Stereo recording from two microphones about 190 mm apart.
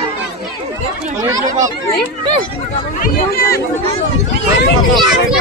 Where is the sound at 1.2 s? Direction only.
20° right (ahead or behind).